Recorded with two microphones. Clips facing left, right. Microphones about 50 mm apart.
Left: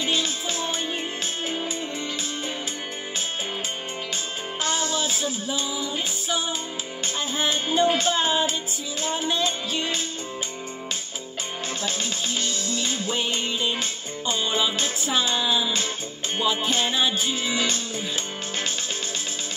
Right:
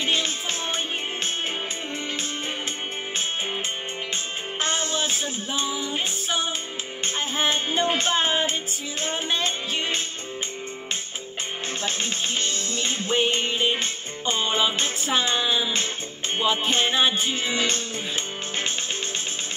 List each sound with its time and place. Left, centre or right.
0.0 s music: right
4.6 s music: right
11.8 s music: right